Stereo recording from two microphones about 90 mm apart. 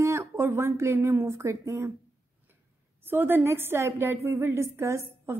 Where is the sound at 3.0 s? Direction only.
25° right (ahead or behind).